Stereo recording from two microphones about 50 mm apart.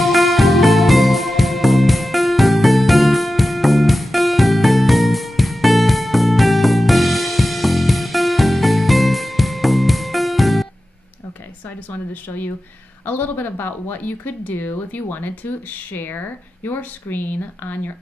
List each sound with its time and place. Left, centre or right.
0.0 s music: centre
11.9 s a sound: left
13.0 s speech: left